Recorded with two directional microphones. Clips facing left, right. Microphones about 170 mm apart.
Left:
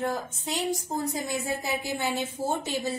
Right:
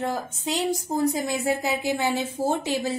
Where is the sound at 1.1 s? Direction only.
90° right.